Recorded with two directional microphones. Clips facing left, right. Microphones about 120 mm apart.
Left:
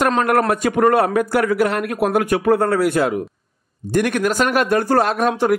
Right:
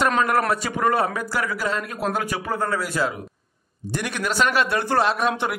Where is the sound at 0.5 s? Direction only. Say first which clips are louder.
Left 6 dB; 55° left (ahead or behind).